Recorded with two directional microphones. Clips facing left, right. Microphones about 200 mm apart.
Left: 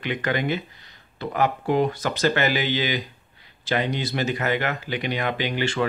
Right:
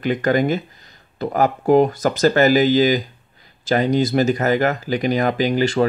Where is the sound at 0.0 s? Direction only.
40° right (ahead or behind).